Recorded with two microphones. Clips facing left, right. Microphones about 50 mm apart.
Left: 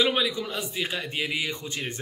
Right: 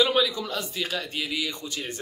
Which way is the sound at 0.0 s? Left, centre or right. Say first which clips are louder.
Right 2 dB; left.